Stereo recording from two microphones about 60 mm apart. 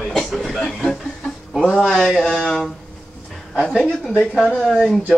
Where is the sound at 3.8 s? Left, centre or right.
Centre.